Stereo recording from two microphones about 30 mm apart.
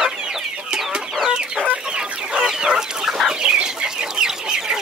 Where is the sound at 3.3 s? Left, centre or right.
Right.